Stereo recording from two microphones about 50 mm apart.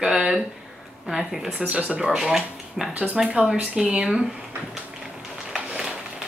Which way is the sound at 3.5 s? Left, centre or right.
Centre.